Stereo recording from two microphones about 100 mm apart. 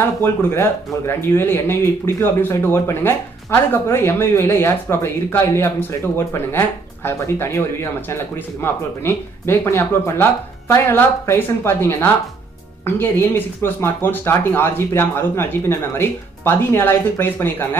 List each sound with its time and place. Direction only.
0.2 s speech: 25° left (ahead or behind)